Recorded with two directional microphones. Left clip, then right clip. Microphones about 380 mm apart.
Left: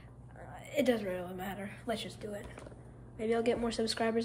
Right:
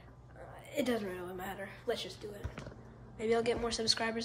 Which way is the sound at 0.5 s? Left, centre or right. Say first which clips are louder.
Left 4 dB; centre.